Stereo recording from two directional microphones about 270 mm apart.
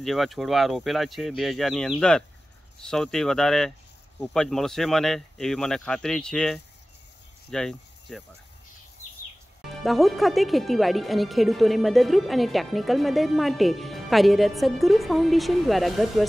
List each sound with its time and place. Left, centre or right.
0.0 s speech: centre
9.8 s speech: centre